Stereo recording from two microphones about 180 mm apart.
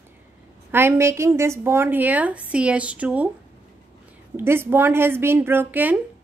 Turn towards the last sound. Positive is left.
turn(degrees=-10)  # may be behind; listen again after turning